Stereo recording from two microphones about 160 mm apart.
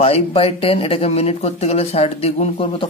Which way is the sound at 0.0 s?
40° left (ahead or behind).